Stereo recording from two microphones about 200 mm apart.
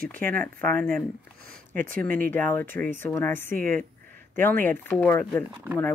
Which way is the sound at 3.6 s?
45° right (ahead or behind).